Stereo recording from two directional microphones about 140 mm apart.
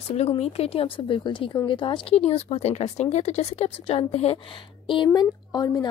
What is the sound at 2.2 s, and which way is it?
A woman's voice, 50° left (ahead or behind).